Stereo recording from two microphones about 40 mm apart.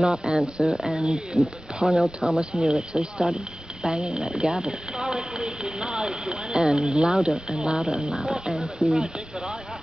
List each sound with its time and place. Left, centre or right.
0.0 s speech: centre
0.7 s speech: centre
1.0 s speech: right
7.8 s speech: centre